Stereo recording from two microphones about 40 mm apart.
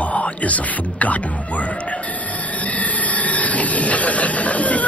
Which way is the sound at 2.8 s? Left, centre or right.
Left.